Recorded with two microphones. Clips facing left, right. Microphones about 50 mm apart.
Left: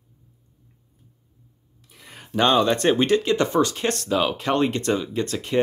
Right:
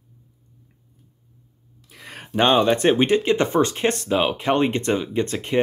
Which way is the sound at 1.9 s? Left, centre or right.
Right.